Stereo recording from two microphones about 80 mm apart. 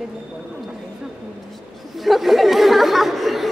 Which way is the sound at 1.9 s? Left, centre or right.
Centre.